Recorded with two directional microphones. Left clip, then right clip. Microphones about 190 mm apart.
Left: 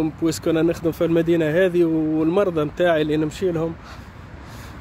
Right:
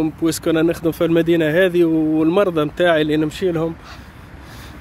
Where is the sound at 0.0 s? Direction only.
Centre (ahead or behind).